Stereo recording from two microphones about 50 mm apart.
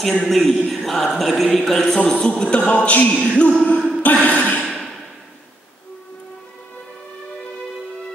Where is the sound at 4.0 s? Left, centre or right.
Left.